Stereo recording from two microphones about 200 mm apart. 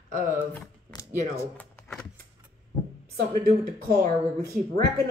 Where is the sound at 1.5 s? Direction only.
5° left (ahead or behind).